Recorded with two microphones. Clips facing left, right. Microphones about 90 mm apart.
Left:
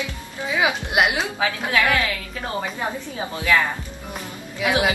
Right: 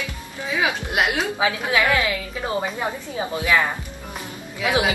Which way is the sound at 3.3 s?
20° right (ahead or behind).